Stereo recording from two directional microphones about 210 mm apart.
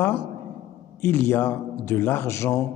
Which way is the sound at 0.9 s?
10° left (ahead or behind).